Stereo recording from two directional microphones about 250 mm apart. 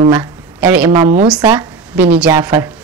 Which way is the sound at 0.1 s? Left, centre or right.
Centre.